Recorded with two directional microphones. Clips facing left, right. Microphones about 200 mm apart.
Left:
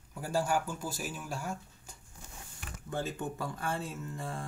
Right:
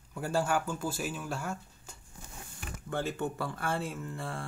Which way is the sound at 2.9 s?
15° left (ahead or behind).